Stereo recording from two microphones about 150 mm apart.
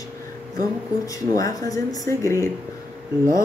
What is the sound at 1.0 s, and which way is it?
Speech, 25° left (ahead or behind).